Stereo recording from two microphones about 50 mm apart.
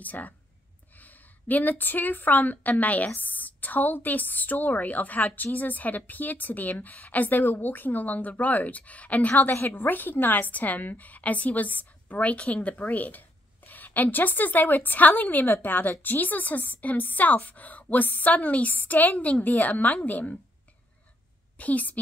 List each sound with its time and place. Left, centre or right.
0.0 s a woman's voice: left
21.5 s a woman's voice: left